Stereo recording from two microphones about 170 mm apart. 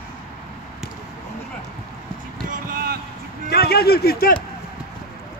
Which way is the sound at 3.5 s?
65° left (ahead or behind).